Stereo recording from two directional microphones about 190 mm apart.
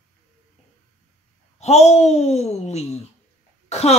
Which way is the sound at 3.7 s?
35° left (ahead or behind).